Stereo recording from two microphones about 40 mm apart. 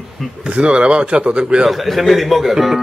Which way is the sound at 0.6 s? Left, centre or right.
Right.